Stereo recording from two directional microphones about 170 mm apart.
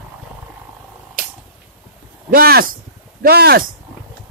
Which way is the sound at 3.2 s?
70° right (ahead or behind).